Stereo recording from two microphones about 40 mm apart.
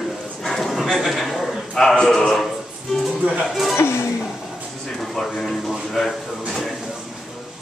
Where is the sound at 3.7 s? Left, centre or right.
Left.